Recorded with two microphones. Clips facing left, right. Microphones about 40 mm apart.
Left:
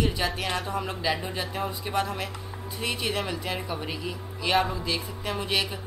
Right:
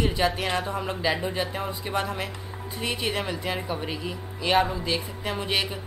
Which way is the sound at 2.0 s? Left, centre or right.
Centre.